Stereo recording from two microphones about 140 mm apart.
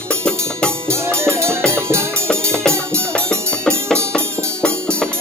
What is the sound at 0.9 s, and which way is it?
Music, 20° right (ahead or behind).